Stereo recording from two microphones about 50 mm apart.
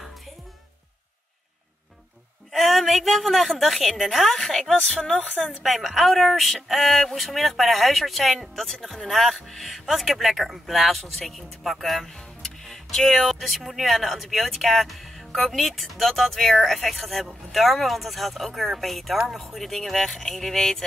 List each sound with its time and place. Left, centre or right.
2.5 s a woman's voice: centre
5.6 s speech: centre